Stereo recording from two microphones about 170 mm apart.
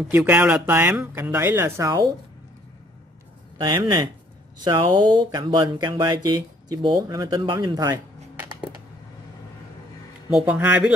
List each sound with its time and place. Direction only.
0.1 s speech: 10° right (ahead or behind)
3.6 s speech: 30° right (ahead or behind)
10.3 s speech: 10° right (ahead or behind)